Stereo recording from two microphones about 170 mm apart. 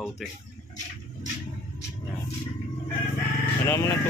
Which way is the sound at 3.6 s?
15° left (ahead or behind).